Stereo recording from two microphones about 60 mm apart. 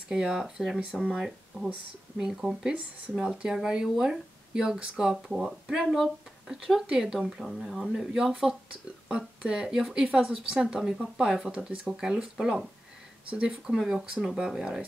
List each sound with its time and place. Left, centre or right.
0.1 s speech: centre
7.0 s speech: centre
13.3 s speech: centre
13.7 s speech: centre